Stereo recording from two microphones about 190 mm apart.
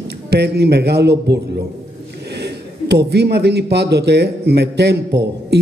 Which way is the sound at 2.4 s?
60° right (ahead or behind).